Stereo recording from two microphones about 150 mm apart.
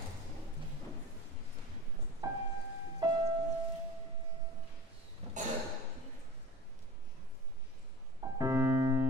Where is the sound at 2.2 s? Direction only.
25° right (ahead or behind).